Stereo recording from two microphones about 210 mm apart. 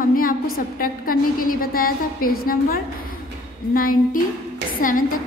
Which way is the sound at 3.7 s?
40° left (ahead or behind).